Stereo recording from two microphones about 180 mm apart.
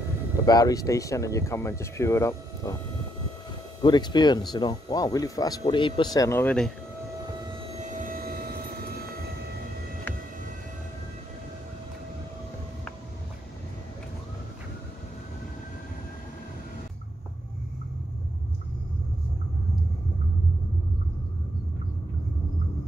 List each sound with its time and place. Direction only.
0.5 s speech: 20° left (ahead or behind)
3.8 s speech: 25° left (ahead or behind); by 6.7 s 5° left (ahead or behind)
7.8 s vehicle: 45° right (ahead or behind)